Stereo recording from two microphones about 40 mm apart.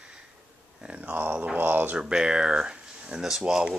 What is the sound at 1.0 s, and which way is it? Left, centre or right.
Speech, right.